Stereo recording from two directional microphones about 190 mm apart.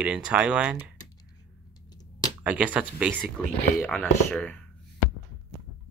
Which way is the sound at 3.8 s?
5° left (ahead or behind).